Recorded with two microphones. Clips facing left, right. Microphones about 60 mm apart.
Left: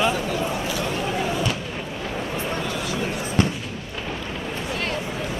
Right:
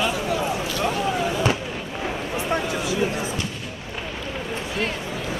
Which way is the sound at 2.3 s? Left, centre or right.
Centre.